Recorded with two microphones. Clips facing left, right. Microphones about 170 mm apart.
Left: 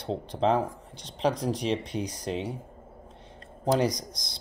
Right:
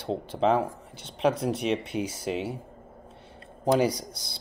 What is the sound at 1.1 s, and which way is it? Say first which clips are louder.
Speech: right 2 dB; 35° left (ahead or behind).